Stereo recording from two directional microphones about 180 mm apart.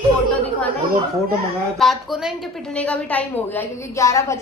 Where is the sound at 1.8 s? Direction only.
Centre (ahead or behind).